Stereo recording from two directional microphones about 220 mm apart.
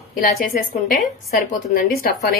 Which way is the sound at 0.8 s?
40° left (ahead or behind).